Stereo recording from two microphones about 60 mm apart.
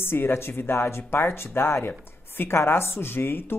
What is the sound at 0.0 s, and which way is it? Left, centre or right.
Speech, left.